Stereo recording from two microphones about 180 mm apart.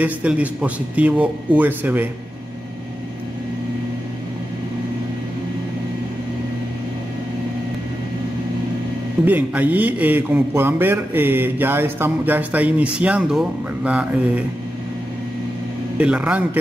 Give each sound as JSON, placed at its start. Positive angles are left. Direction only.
{"t": 0.0, "sound": "a man's voice", "side_deg": -5}
{"t": 9.2, "sound": "a man's voice", "side_deg": -10}
{"t": 16.0, "sound": "a man's voice", "side_deg": -5}